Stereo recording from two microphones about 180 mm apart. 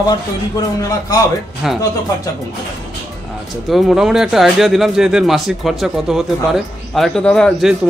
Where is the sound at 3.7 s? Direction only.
Centre (ahead or behind).